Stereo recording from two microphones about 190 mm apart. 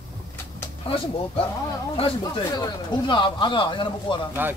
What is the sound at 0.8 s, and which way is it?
Speech, 30° left (ahead or behind).